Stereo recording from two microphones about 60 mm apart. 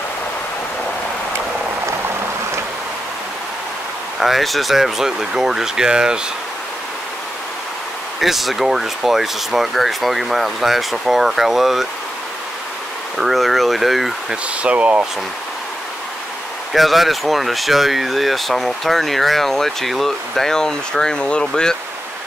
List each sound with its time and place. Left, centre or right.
4.2 s speech: centre
8.2 s speech: centre
13.2 s speech: centre
14.3 s speech: right
16.7 s speech: centre